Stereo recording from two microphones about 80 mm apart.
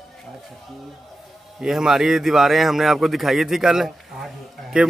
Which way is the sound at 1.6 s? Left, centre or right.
Centre.